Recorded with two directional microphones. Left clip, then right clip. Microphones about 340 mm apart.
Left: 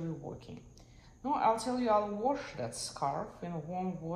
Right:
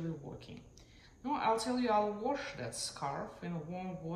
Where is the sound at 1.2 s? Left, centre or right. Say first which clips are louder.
Left 3 dB; centre.